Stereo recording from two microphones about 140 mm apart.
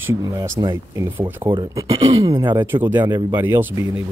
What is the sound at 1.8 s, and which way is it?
Speech, 45° right (ahead or behind).